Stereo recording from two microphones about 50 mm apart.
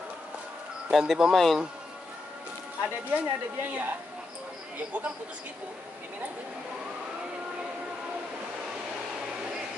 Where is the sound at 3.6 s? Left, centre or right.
Right.